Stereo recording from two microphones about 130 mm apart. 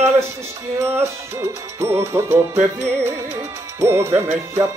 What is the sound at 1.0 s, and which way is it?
Music, 20° right (ahead or behind).